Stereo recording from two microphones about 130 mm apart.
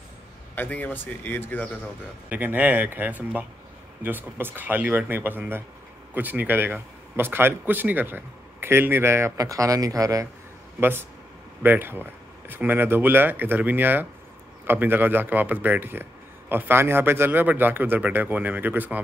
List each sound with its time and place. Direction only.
0.6 s speech: 10° left (ahead or behind)
2.2 s a man's voice: 10° right (ahead or behind)
10.8 s a man's voice: 15° right (ahead or behind)